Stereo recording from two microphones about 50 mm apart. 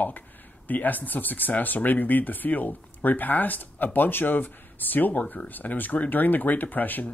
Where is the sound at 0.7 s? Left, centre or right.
Left.